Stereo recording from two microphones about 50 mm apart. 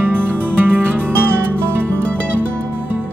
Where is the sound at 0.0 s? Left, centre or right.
Right.